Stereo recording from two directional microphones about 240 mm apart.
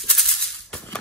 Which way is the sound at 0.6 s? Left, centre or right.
Centre.